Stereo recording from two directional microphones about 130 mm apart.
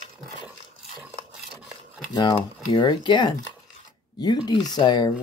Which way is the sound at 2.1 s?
35° left (ahead or behind).